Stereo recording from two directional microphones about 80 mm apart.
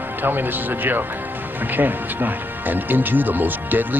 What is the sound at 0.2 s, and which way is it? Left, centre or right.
Speech, right.